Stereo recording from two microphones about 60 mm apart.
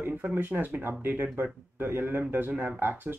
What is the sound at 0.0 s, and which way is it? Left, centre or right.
Speech, right.